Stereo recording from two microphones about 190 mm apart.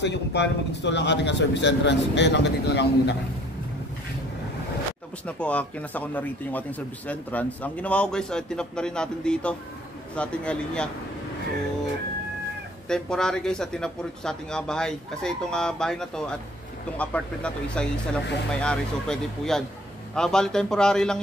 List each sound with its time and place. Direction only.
0.0 s a man's voice: 65° left (ahead or behind)
5.2 s speech: 5° left (ahead or behind)
12.8 s speech: 5° left (ahead or behind)